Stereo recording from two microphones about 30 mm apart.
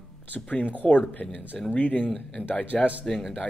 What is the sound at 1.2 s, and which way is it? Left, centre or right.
Speech, left.